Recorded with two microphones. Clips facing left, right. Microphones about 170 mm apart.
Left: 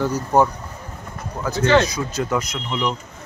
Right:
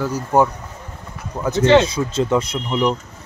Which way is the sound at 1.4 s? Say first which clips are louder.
Right 4 dB; 25° right (ahead or behind).